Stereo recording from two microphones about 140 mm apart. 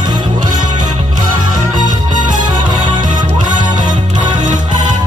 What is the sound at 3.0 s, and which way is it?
Music, 65° right (ahead or behind).